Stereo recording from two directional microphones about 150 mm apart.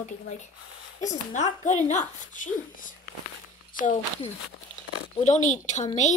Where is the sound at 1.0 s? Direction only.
50° left (ahead or behind).